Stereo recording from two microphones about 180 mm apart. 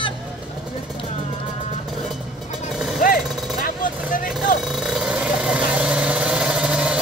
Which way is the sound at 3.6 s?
50° left (ahead or behind).